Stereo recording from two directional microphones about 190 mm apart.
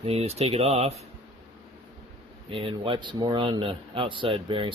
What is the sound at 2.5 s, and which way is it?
A man's voice, 30° right (ahead or behind).